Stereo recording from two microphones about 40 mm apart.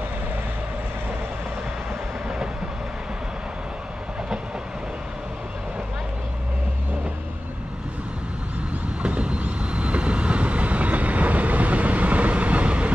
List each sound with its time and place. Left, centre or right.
9.0 s vehicle: right